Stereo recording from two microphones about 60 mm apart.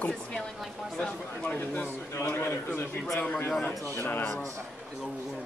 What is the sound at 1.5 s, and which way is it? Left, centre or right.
A man's voice, left.